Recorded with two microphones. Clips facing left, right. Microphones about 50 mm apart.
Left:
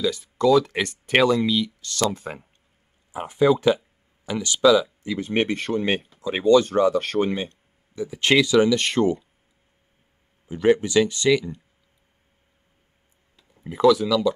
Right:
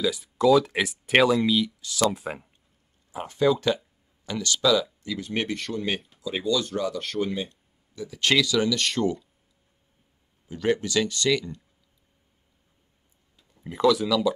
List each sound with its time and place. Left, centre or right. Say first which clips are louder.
0.0 s speech: left 1 dB; centre
3.1 s speech: left 4 dB; centre; by 7.5 s left
7.9 s speech: left 4 dB; left
10.5 s speech: left 6 dB; left
13.7 s speech: left 4 dB; centre